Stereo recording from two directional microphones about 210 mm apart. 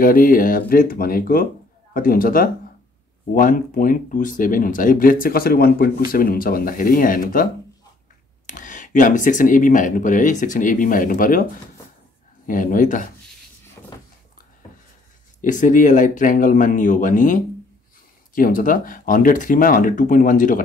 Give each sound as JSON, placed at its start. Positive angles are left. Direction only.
{"t": 0.0, "sound": "speech", "side_deg": 40}
{"t": 8.5, "sound": "speech", "side_deg": 40}
{"t": 12.4, "sound": "speech", "side_deg": 40}
{"t": 15.4, "sound": "speech", "side_deg": 40}